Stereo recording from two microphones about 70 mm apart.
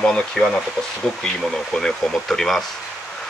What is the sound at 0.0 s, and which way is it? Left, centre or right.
Speech, centre.